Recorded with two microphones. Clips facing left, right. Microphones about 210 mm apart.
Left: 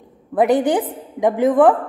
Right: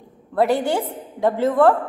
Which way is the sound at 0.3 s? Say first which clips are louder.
Left 3 dB; 15° left (ahead or behind).